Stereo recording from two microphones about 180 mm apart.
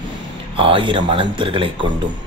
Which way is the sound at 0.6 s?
30° right (ahead or behind).